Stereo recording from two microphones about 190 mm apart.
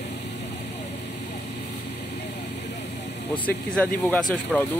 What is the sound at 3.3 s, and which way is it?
Speech, 10° left (ahead or behind).